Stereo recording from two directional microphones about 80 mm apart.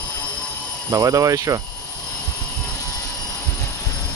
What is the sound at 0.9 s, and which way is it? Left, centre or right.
Speech, right.